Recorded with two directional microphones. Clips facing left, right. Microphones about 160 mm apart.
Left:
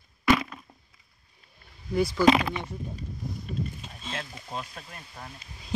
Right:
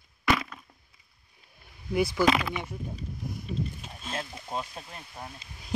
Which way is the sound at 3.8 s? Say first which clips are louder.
Right 1 dB; 5° right (ahead or behind).